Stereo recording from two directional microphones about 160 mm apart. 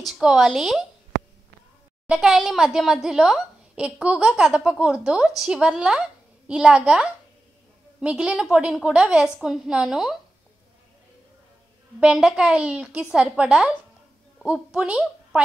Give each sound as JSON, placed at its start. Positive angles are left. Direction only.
{"t": 0.0, "sound": "a woman's voice", "side_deg": -5}
{"t": 2.0, "sound": "a woman's voice", "side_deg": 0}
{"t": 12.0, "sound": "a woman's voice", "side_deg": -5}